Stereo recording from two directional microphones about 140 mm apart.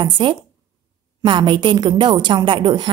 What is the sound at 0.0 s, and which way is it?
A woman's voice, 35° right (ahead or behind).